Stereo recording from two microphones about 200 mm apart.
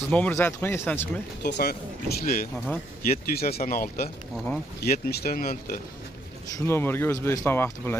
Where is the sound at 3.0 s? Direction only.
50° left (ahead or behind).